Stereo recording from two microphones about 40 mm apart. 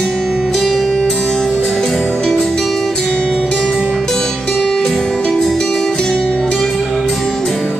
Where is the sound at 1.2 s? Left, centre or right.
Left.